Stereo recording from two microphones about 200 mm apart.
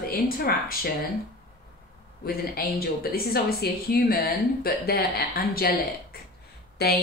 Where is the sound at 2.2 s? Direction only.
45° left (ahead or behind).